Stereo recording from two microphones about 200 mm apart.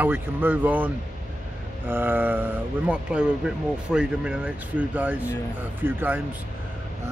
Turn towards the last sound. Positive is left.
turn(degrees=-10)  # may be behind; listen again after turning